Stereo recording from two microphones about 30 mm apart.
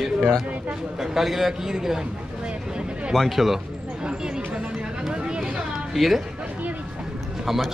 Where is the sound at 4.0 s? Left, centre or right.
Right.